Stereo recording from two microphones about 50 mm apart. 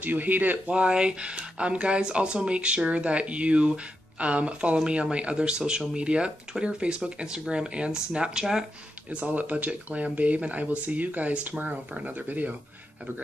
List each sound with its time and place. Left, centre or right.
0.0 s speech: right
0.7 s speech: right
9.1 s speech: right